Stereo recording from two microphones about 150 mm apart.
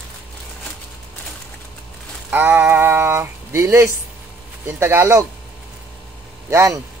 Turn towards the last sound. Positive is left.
turn(degrees=-20)  # may be behind; listen again after turning